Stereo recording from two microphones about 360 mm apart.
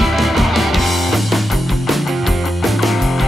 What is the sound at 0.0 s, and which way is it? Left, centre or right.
Music, centre.